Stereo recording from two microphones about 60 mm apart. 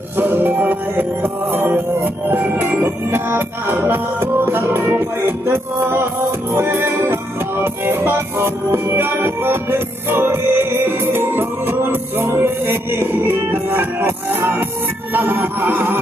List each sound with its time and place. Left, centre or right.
0.2 s music: right